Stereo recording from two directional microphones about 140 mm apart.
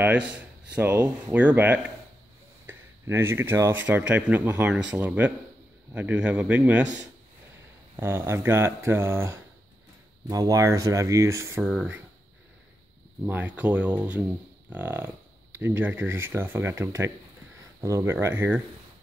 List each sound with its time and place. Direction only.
0.7 s speech: 10° right (ahead or behind)
7.9 s speech: 15° right (ahead or behind)
11.6 s speech: 5° right (ahead or behind)
13.2 s speech: 10° right (ahead or behind)